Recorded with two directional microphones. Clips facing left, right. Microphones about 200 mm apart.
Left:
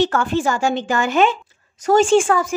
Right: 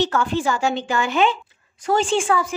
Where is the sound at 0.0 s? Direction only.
50° left (ahead or behind).